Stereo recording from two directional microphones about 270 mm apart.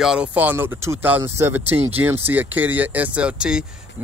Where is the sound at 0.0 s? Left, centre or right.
Centre.